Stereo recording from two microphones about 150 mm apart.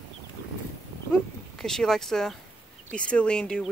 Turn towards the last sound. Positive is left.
turn(degrees=5)  # may be behind; listen again after turning